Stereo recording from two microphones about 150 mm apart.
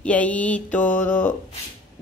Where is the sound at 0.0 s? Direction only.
10° left (ahead or behind).